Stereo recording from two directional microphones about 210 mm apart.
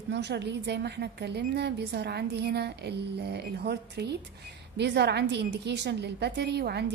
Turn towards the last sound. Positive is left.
turn(degrees=-50)  # may be behind; listen again after turning